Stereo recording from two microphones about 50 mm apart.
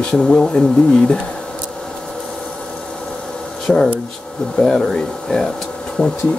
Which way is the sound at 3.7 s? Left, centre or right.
Centre.